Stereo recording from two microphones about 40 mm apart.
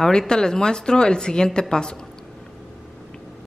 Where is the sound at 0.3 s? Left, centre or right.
Centre.